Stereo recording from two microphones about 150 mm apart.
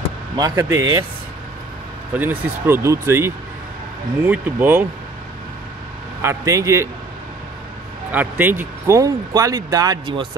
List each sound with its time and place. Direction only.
0.4 s speech: 20° right (ahead or behind)
2.1 s speech: 15° right (ahead or behind)
6.2 s speech: 20° right (ahead or behind)
8.1 s speech: 10° right (ahead or behind); by 10.2 s 30° right (ahead or behind)